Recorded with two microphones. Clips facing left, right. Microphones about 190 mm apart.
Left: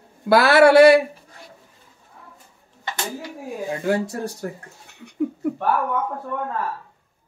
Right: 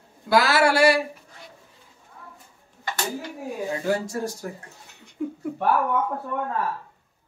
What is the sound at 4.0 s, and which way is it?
Speech, 60° left (ahead or behind).